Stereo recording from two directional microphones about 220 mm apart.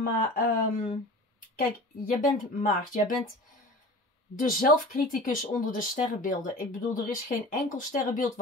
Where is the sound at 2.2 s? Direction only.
35° left (ahead or behind).